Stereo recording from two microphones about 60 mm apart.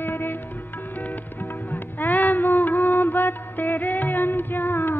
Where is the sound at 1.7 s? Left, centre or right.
Left.